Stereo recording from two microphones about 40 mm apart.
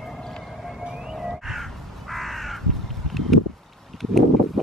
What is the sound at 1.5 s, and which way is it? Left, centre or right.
Crow, centre.